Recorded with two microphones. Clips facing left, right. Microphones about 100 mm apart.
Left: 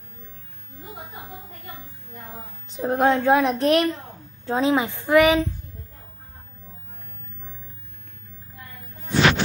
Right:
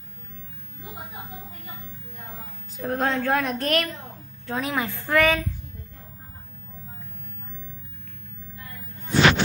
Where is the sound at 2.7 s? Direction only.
25° left (ahead or behind).